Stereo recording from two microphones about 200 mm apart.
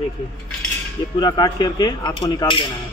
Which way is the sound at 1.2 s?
20° left (ahead or behind).